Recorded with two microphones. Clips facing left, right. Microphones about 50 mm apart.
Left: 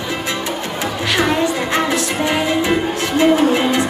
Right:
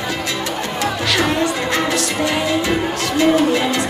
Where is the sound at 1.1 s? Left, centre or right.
Left.